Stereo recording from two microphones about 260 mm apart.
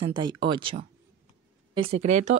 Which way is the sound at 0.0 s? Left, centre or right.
Centre.